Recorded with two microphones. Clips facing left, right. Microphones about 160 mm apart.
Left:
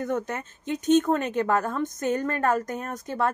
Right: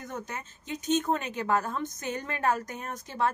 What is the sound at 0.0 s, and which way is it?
A woman's voice, 60° left (ahead or behind).